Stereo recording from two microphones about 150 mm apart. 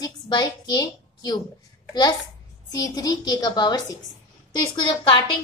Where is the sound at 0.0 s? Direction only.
30° left (ahead or behind).